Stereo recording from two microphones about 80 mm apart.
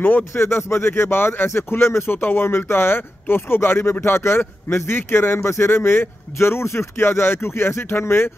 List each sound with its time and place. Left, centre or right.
0.3 s speech: left